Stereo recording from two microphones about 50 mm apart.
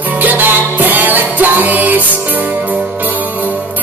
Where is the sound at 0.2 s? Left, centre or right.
Right.